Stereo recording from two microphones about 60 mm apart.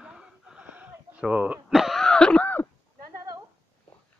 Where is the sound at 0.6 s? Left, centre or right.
Right.